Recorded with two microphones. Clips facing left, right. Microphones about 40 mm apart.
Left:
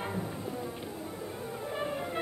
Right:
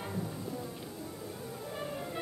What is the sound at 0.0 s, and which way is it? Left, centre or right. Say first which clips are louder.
Music: left 3 dB; left.